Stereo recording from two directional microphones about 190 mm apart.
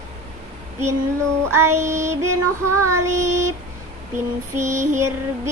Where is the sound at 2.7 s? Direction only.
15° right (ahead or behind).